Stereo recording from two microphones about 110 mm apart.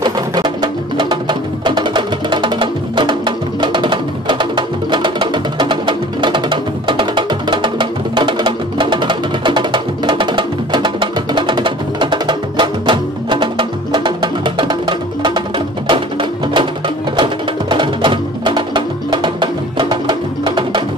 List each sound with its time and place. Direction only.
0.0 s music: 40° right (ahead or behind)